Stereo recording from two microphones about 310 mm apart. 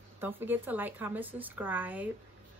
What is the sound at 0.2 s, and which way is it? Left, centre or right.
Speech, centre.